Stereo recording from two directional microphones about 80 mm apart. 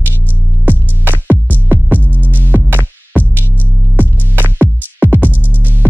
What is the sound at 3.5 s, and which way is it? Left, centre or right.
Music, left.